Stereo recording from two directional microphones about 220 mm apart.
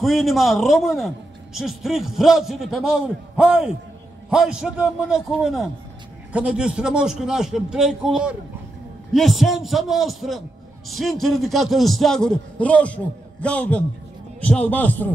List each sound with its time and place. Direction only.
0.0 s a man's voice: centre (ahead or behind)